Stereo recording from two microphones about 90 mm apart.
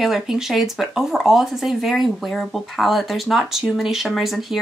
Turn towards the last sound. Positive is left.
turn(degrees=0)  # may be behind; listen again after turning